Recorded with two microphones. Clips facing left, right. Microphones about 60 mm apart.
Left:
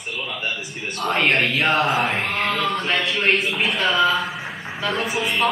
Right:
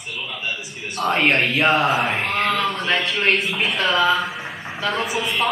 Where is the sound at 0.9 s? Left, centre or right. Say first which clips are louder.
Right 1 dB; centre.